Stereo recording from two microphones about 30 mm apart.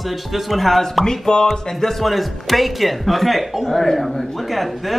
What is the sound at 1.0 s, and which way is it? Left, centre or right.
Speech, centre.